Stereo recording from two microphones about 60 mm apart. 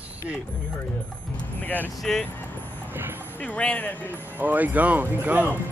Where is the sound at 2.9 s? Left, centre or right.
Right.